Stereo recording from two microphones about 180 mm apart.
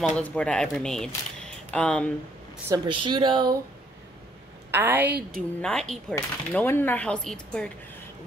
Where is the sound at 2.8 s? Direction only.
25° right (ahead or behind).